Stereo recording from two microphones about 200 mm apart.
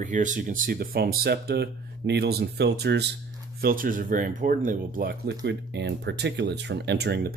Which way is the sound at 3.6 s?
45° right (ahead or behind).